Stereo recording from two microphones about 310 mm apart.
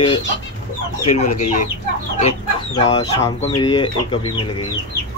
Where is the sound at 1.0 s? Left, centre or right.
Left.